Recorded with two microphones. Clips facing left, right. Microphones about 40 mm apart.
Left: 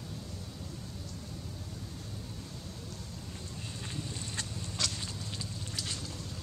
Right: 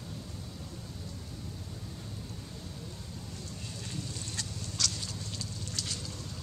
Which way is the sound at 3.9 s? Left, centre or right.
Left.